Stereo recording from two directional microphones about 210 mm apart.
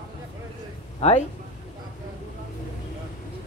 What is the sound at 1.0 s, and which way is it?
Speech, 30° left (ahead or behind).